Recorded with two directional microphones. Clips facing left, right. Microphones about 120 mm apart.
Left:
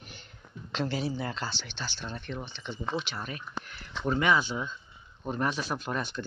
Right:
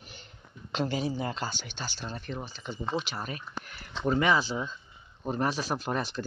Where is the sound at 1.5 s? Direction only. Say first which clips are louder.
Even; 45° right (ahead or behind).